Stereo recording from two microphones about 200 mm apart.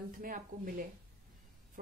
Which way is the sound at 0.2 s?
45° right (ahead or behind).